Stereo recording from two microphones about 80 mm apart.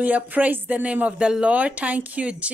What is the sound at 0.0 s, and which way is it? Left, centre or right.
Speech, centre.